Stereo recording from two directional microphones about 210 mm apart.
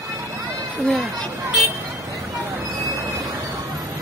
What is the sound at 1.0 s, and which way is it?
Speech, 15° right (ahead or behind).